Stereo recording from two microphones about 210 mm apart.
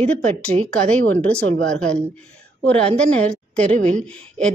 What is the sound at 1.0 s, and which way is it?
Speech, 5° left (ahead or behind).